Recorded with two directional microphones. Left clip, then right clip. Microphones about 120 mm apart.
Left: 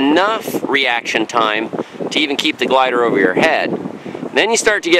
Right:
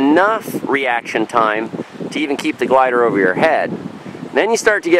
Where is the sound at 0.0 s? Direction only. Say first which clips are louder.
Right 1 dB; 25° left (ahead or behind).